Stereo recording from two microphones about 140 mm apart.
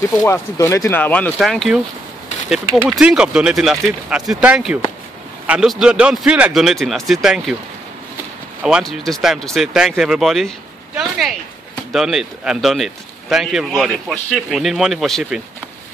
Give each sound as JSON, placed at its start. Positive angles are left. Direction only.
{"t": 0.3, "sound": "speech", "side_deg": 20}
{"t": 1.4, "sound": "speech", "side_deg": 0}
{"t": 8.6, "sound": "speech", "side_deg": -5}